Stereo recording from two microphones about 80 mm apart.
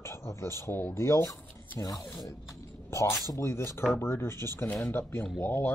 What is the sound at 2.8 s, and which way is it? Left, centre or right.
A man's voice, left.